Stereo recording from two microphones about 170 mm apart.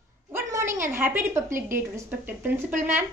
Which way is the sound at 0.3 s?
15° right (ahead or behind).